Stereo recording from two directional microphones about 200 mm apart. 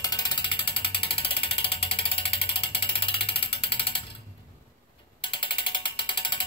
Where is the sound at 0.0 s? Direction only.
20° left (ahead or behind).